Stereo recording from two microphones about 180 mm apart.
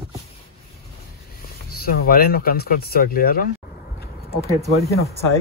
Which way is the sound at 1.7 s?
60° left (ahead or behind).